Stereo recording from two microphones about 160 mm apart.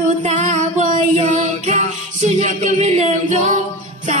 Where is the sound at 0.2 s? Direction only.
50° right (ahead or behind).